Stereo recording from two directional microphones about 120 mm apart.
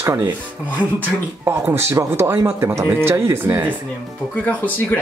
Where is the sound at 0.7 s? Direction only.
15° left (ahead or behind).